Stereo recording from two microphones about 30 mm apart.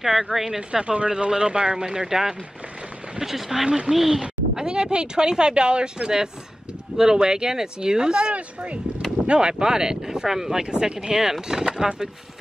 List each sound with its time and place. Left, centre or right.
0.0 s speech: centre
0.6 s speech: right; by 3.6 s centre
3.6 s speech: right
3.9 s speech: centre
4.2 s speech: right
9.6 s speech: right
10.6 s speech: right